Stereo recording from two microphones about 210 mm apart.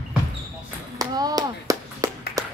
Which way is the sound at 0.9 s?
20° right (ahead or behind).